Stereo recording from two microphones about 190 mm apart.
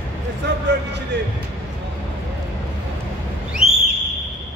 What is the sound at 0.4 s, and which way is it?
Speech, 60° right (ahead or behind).